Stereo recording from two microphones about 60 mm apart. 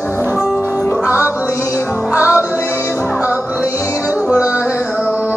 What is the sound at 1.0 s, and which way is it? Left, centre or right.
Music, right.